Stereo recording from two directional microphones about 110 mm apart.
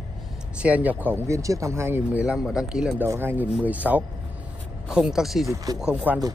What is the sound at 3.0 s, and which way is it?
Speech, 20° right (ahead or behind).